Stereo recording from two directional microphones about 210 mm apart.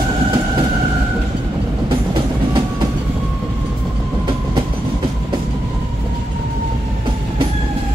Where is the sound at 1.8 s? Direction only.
20° right (ahead or behind).